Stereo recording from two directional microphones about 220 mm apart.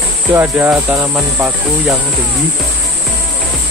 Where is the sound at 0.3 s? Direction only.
10° right (ahead or behind).